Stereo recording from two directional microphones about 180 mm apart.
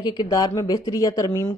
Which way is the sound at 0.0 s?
20° left (ahead or behind).